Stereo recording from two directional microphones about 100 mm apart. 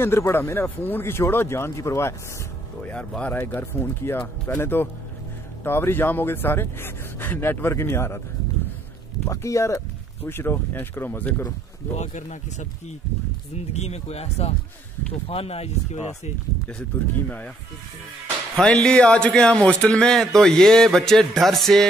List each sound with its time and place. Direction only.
0.0 s speech: 25° left (ahead or behind)
2.8 s speech: 15° left (ahead or behind)
9.3 s speech: 30° left (ahead or behind)
13.7 s speech: 90° left
16.9 s a man's voice: 15° left (ahead or behind)
18.6 s a man's voice: 10° left (ahead or behind)